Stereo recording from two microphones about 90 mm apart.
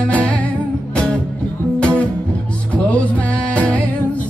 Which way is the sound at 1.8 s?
10° left (ahead or behind).